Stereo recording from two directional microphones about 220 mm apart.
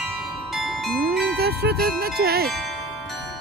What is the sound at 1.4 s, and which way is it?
Speech, 45° right (ahead or behind).